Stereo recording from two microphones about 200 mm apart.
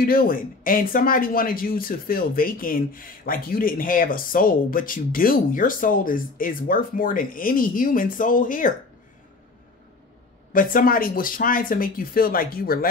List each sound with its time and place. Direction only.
0.0 s speech: 45° left (ahead or behind)
10.5 s speech: 45° left (ahead or behind)